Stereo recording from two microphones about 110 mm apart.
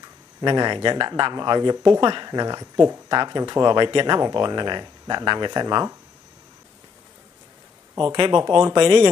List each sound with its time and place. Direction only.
0.4 s speech: 40° right (ahead or behind)
8.0 s speech: 35° right (ahead or behind)